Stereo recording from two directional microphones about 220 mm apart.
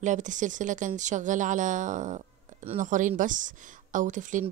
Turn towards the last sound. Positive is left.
turn(degrees=-35)  # may be behind; listen again after turning